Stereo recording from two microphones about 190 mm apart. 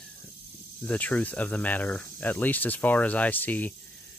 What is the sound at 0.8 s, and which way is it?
Cricket, 10° left (ahead or behind).